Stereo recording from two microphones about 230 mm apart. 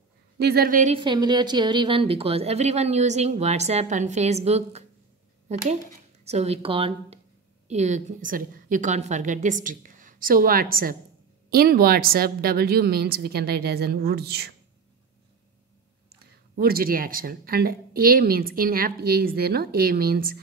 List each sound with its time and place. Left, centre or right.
0.4 s speech: right
0.9 s a woman's voice: centre; by 14.5 s right
16.5 s speech: right